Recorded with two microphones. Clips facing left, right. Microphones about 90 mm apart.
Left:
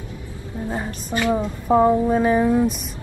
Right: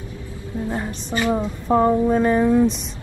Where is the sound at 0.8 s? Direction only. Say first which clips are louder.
Left 2 dB; 15° right (ahead or behind).